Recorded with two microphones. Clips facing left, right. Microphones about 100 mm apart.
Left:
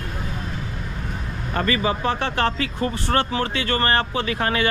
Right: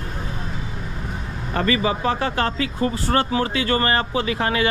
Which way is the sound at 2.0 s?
35° right (ahead or behind).